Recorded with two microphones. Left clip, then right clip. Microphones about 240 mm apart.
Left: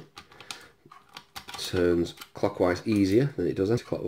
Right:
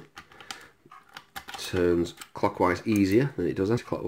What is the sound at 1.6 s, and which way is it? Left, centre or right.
Speech, centre.